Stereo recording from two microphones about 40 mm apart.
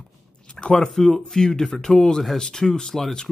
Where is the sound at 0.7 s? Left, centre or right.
Centre.